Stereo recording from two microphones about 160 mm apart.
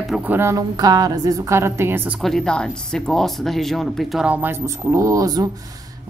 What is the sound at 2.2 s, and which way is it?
Speech, centre (ahead or behind).